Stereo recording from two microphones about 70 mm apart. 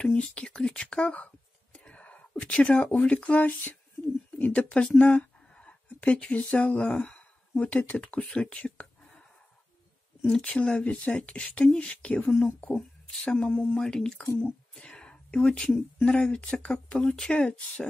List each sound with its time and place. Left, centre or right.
0.0 s speech: centre
10.2 s speech: centre